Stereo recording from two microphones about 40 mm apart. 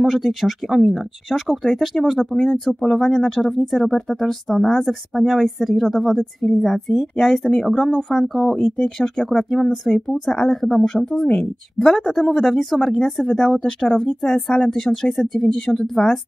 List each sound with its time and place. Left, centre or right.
0.0 s speech: centre
2.3 s speech: centre
8.5 s speech: centre
11.0 s speech: centre